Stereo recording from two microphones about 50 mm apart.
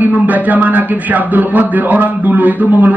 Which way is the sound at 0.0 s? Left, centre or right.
Right.